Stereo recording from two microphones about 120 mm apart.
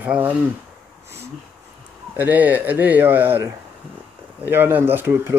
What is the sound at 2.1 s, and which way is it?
A man's voice, 15° right (ahead or behind).